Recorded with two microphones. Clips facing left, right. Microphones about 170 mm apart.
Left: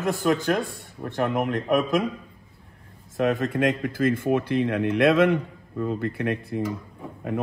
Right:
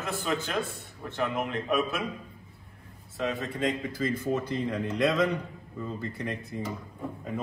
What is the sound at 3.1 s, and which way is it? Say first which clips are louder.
Speech: left 8 dB; 65° left (ahead or behind).